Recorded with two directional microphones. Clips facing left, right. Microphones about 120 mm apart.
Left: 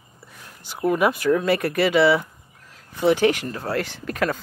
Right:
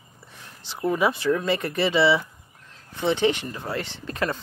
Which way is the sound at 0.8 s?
5° left (ahead or behind).